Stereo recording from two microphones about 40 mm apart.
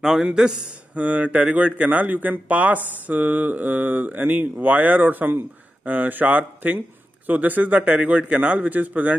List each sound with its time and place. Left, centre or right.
0.0 s a man's voice: centre
0.7 s a man's voice: right